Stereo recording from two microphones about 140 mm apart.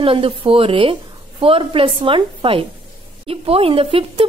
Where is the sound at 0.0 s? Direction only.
40° right (ahead or behind).